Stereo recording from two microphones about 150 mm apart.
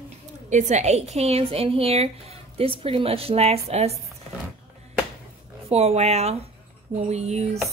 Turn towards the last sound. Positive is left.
turn(degrees=-45)  # may be behind; listen again after turning